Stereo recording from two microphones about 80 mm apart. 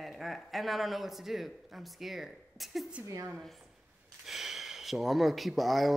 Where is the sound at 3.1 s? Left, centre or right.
Right.